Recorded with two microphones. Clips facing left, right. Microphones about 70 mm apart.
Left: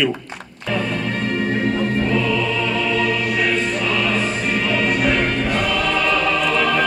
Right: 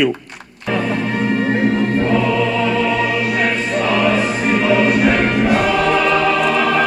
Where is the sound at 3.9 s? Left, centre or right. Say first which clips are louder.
Right 5 dB; centre.